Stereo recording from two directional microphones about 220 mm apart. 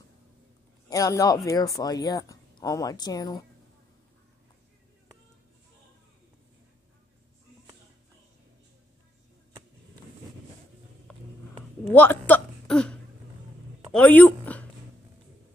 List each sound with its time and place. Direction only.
0.8 s speech: 15° left (ahead or behind)
11.1 s a sound: 5° left (ahead or behind)
13.9 s speech: 5° left (ahead or behind)